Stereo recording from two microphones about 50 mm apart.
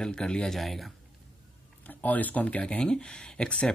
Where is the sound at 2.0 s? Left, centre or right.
Left.